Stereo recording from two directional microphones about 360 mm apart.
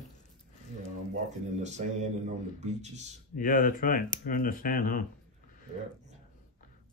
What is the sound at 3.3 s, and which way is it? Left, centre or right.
Speech, left.